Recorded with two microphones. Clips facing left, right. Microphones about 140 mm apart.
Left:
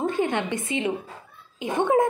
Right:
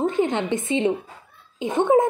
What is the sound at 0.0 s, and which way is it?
A woman's voice, 20° right (ahead or behind).